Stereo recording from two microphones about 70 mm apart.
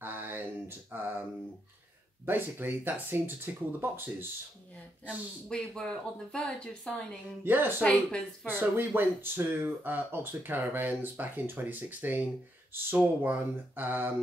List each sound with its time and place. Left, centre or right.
0.0 s mantra: right
2.2 s speech: right
5.0 s speech: centre
7.4 s speech: right
7.8 s speech: centre
8.5 s speech: right